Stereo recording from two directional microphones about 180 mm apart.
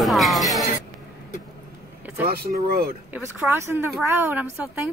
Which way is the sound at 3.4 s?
10° right (ahead or behind).